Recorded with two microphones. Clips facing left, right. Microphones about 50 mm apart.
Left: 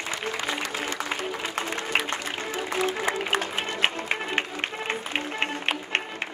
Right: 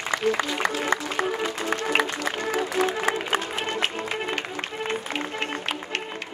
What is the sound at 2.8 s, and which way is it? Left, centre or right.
Music, right.